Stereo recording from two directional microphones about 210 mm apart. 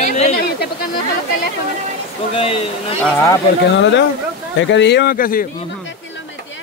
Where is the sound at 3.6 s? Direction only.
60° left (ahead or behind); by 5.4 s 40° left (ahead or behind).